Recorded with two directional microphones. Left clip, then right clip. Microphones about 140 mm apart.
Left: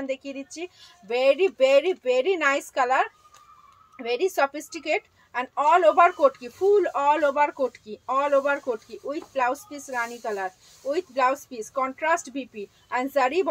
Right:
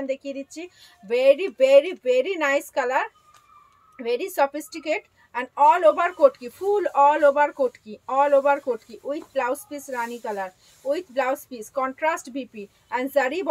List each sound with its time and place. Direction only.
0.0 s speech: 30° right (ahead or behind)